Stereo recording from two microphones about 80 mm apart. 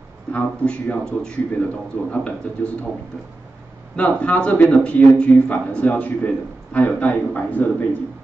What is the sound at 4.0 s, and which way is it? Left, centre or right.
A man's voice, centre.